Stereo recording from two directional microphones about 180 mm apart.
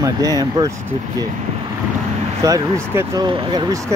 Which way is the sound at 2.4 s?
20° right (ahead or behind).